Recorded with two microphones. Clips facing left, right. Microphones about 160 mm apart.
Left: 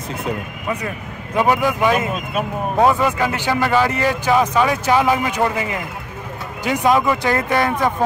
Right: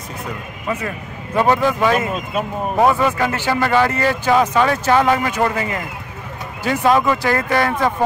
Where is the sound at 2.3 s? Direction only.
Centre (ahead or behind).